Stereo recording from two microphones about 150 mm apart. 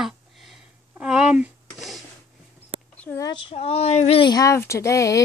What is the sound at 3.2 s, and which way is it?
Speech, 30° left (ahead or behind).